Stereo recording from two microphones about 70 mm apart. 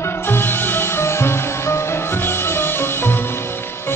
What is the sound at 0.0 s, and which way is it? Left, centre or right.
Music, left.